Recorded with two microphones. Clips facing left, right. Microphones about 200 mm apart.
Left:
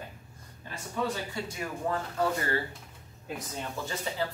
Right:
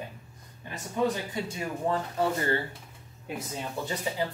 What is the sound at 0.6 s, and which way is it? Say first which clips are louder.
Speech: right 4 dB; 20° right (ahead or behind).